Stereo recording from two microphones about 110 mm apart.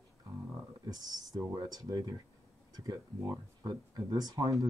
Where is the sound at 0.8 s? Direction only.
35° right (ahead or behind).